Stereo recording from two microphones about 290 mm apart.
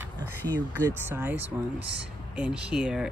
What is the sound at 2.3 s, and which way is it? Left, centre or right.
Speech, centre.